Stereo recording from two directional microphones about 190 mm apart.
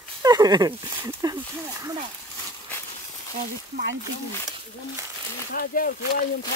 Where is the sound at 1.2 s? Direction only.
20° right (ahead or behind).